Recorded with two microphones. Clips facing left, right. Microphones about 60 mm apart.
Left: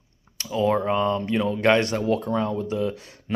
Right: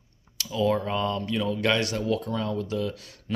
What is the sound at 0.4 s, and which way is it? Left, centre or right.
Speech, left.